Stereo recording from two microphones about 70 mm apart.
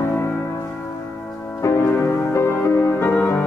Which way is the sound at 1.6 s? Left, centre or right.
Left.